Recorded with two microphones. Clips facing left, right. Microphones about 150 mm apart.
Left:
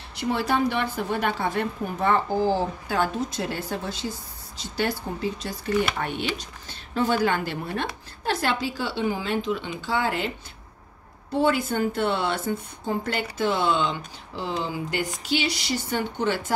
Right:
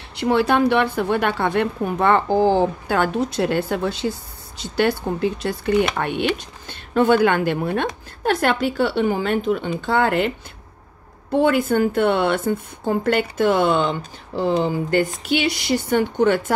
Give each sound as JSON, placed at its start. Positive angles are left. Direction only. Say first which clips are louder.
{"t": 0.1, "sound": "a woman's voice", "louder": "right 7 dB", "side_deg": -65}
{"t": 11.3, "sound": "a woman's voice", "louder": "right 6 dB", "side_deg": -55}